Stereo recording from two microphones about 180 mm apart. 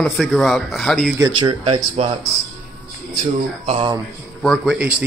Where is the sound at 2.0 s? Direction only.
35° right (ahead or behind).